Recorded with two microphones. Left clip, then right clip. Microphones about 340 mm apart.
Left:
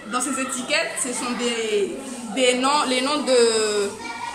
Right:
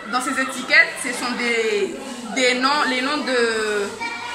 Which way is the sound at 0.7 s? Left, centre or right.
Centre.